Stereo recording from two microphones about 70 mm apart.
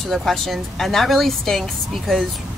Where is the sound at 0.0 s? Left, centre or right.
Centre.